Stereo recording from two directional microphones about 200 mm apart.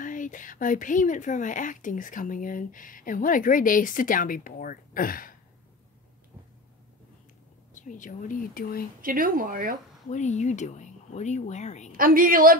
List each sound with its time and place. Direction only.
0.0 s speech: 40° left (ahead or behind)
7.7 s speech: 40° left (ahead or behind)
9.0 s speech: 45° right (ahead or behind)
10.0 s speech: 35° left (ahead or behind)
11.9 s speech: 45° right (ahead or behind)